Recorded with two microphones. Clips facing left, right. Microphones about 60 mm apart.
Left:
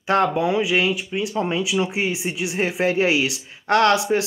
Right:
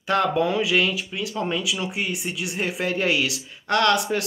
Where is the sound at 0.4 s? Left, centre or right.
Centre.